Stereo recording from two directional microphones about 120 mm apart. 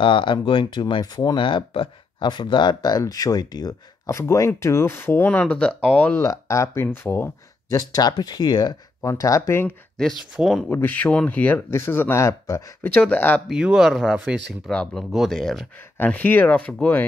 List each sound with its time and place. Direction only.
0.0 s speech: 40° left (ahead or behind); by 6.2 s 10° left (ahead or behind)
6.2 s speech: 25° left (ahead or behind)
7.7 s speech: 30° left (ahead or behind)
9.0 s speech: 25° left (ahead or behind)
10.3 s speech: centre (ahead or behind)
10.7 s speech: 15° left (ahead or behind)
12.9 s speech: 15° left (ahead or behind)
13.5 s speech: 5° right (ahead or behind)
14.7 s speech: 5° left (ahead or behind)
16.0 s speech: 15° left (ahead or behind)